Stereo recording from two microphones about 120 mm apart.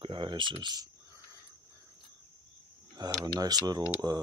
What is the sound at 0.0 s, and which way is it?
Speech, 40° right (ahead or behind).